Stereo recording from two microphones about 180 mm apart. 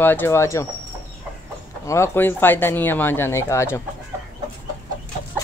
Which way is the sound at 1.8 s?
15° left (ahead or behind).